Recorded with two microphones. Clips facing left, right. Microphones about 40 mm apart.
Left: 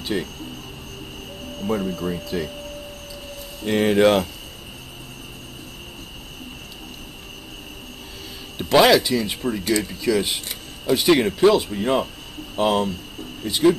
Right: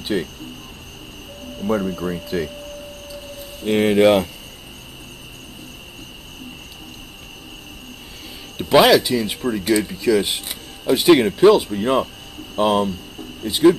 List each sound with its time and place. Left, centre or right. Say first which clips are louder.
0.0 s speech: right 3 dB; centre
1.6 s speech: right 3 dB; centre
2.2 s speech: right 3 dB; centre
3.6 s speech: right 2 dB; centre
8.6 s speech: right 2 dB; centre